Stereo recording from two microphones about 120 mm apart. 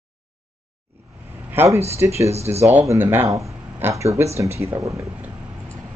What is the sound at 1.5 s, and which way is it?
Speech, 15° right (ahead or behind).